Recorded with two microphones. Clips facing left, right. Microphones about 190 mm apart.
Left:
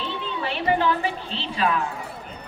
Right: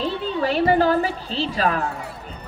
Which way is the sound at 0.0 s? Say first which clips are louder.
Right 6 dB; 40° right (ahead or behind).